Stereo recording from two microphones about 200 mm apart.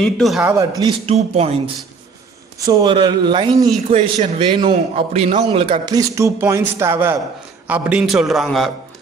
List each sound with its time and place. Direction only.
0.0 s a man's voice: centre (ahead or behind)
0.6 s a man's voice: 20° right (ahead or behind)
2.6 s a man's voice: 20° right (ahead or behind); by 8.7 s centre (ahead or behind)